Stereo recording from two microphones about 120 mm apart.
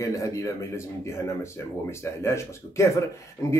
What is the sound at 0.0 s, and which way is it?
Speech, 25° left (ahead or behind).